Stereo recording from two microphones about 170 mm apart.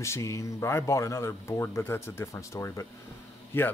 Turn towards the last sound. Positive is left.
turn(degrees=15)  # may be behind; listen again after turning